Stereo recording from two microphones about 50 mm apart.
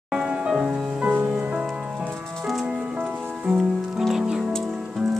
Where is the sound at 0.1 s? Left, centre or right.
Centre.